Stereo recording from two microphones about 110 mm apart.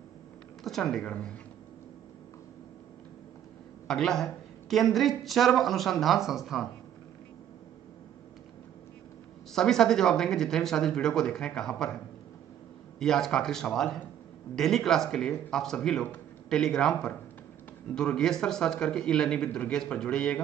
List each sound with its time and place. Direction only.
0.7 s speech: 5° left (ahead or behind)
3.8 s speech: 5° left (ahead or behind)
9.5 s speech: 5° left (ahead or behind)
13.0 s speech: 5° left (ahead or behind)